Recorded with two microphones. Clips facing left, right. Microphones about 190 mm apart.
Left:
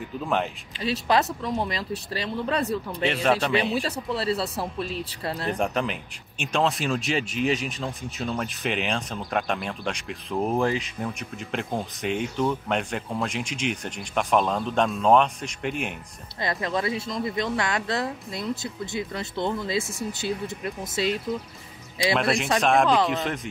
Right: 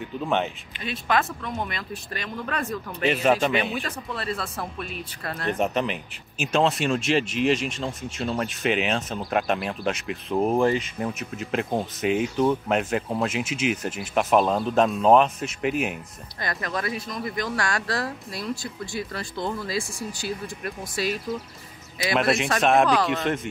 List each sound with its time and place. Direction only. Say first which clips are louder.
0.0 s speech: right 1 dB; centre (ahead or behind)
0.7 s speech: left 2 dB; 35° left (ahead or behind)
3.1 s speech: right 3 dB; 5° right (ahead or behind)
3.5 s speech: left 2 dB; 35° left (ahead or behind)
5.5 s speech: right 3 dB; centre (ahead or behind)
16.3 s a woman's voice: left 3 dB; 25° left (ahead or behind)
22.1 s speech: right 2 dB; centre (ahead or behind)